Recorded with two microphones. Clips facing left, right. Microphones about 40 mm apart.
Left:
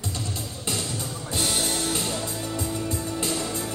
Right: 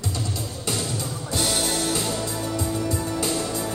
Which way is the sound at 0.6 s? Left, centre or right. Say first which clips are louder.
Right 2 dB; right.